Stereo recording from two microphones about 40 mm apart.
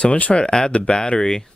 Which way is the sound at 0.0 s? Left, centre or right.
Left.